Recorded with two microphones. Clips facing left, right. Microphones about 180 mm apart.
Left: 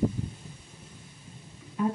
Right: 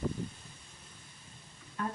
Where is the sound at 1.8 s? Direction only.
10° left (ahead or behind).